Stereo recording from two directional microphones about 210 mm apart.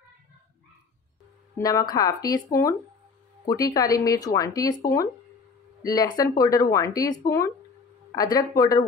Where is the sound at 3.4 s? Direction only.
15° left (ahead or behind).